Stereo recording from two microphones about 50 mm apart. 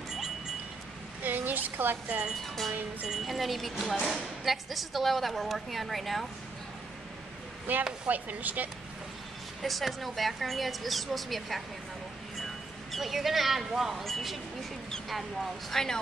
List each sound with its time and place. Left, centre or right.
1.2 s a sound: right
2.0 s speech: right
2.4 s speech: centre
7.7 s speech: right
9.6 s speech: centre
12.9 s speech: centre